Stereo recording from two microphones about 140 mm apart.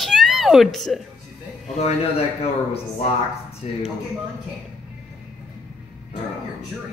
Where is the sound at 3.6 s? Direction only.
50° left (ahead or behind).